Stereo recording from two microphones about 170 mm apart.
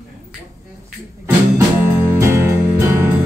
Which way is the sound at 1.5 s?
15° right (ahead or behind).